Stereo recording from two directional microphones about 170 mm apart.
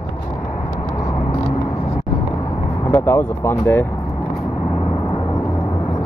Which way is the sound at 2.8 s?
15° left (ahead or behind).